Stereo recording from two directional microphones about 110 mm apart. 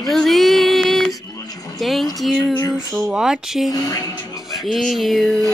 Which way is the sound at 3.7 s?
30° left (ahead or behind).